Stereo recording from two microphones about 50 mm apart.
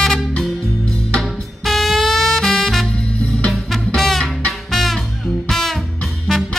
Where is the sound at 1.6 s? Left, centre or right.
Centre.